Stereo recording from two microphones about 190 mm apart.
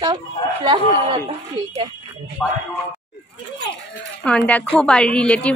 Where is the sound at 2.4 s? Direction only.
5° left (ahead or behind).